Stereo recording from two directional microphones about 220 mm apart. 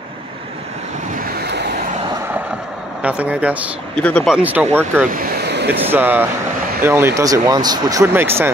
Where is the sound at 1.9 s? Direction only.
20° right (ahead or behind).